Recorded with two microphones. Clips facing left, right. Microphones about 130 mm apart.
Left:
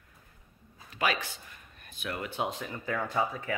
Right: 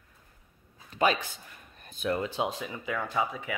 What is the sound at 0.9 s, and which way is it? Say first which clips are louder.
Speech: right 4 dB; 30° right (ahead or behind).